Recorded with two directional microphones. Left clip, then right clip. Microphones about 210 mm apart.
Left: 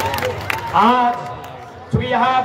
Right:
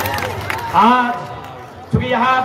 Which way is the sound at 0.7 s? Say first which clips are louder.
Right 2 dB; 15° left (ahead or behind).